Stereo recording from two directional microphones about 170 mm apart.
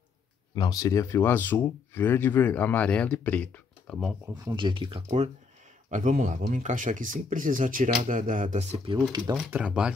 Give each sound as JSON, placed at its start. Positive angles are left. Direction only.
{"t": 0.6, "sound": "speech", "side_deg": 20}
{"t": 4.5, "sound": "speech", "side_deg": -30}
{"t": 5.0, "sound": "speech", "side_deg": -40}
{"t": 9.1, "sound": "speech", "side_deg": -25}
{"t": 9.4, "sound": "speech", "side_deg": -5}